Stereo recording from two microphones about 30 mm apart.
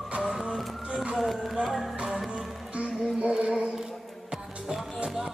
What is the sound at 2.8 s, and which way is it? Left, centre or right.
Music, right.